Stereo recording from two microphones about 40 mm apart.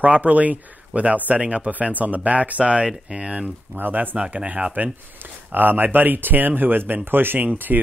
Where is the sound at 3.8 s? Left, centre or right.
Right.